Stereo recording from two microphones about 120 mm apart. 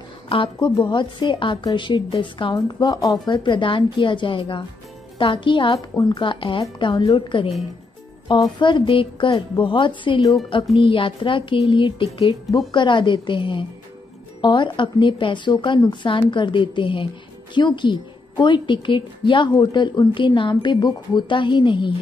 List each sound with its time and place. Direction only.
0.3 s a woman's voice: 45° left (ahead or behind)